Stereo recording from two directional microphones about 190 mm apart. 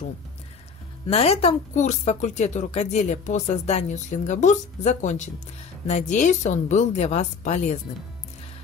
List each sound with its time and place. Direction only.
1.0 s a woman's voice: 30° left (ahead or behind)